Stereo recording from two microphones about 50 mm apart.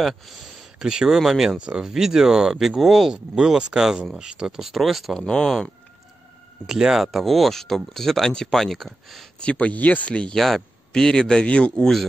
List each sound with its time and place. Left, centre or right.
0.7 s speech: centre
5.1 s speech: centre
6.6 s speech: centre
9.4 s speech: left
10.3 s speech: centre